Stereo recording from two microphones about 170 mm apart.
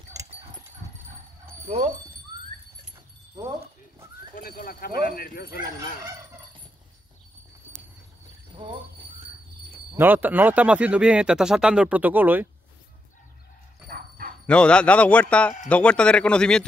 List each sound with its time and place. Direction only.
0.1 s a sound: 20° right (ahead or behind)
4.4 s speech: 55° left (ahead or behind)
8.6 s speech: 30° right (ahead or behind)
9.9 s speech: 10° right (ahead or behind)
13.8 s dog: 55° right (ahead or behind)
14.4 s a man's voice: 5° left (ahead or behind)